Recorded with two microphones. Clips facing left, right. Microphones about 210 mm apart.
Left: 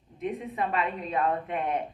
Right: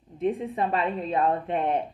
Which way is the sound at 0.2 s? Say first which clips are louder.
Right 5 dB; 30° right (ahead or behind).